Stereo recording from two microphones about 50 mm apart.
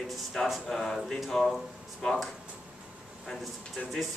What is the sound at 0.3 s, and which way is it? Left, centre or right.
Speech, centre.